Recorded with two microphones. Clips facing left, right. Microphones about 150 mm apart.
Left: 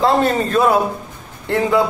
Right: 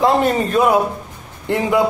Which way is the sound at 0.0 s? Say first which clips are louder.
Even; 15° right (ahead or behind).